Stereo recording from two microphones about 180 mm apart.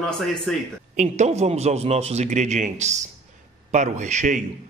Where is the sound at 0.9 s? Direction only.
40° right (ahead or behind).